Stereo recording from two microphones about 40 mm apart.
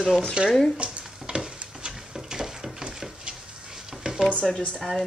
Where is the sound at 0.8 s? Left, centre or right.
Right.